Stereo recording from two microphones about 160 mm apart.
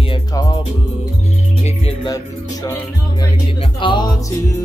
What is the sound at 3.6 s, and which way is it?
Music, 30° left (ahead or behind).